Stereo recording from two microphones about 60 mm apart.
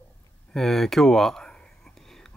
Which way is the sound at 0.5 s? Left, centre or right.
Centre.